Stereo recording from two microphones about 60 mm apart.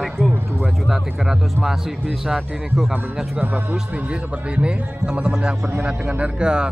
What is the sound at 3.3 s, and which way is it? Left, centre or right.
Speech, right.